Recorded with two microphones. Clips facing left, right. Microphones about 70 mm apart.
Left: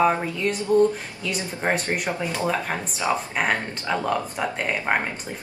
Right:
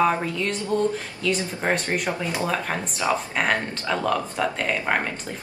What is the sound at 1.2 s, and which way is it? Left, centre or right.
Speech, centre.